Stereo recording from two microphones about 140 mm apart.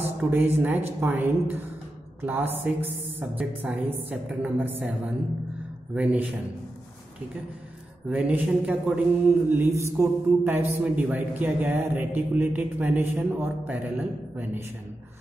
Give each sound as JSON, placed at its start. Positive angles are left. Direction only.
{"t": 0.0, "sound": "a man's voice", "side_deg": -15}
{"t": 8.1, "sound": "a man's voice", "side_deg": -10}